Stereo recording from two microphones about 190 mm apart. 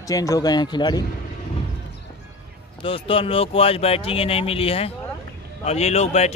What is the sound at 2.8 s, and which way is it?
Speech, 30° left (ahead or behind).